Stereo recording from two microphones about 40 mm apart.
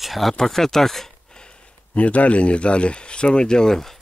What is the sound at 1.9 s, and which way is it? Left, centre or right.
Speech, left.